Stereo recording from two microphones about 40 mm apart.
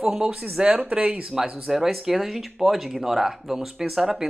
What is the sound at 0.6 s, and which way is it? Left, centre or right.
Speech, right.